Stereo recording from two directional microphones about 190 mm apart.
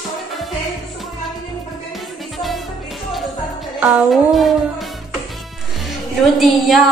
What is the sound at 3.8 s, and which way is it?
Speech, centre (ahead or behind).